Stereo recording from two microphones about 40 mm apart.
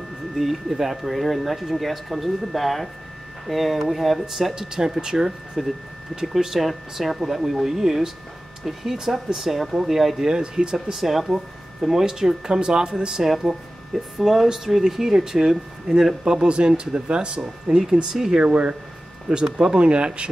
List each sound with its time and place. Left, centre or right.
0.4 s speech: centre
4.6 s speech: centre
5.6 s speech: centre
10.2 s speech: centre
11.0 s speech: centre
13.9 s speech: centre
16.3 s speech: right
17.6 s speech: centre
18.4 s speech: right
19.4 s speech: centre
19.8 s speech: right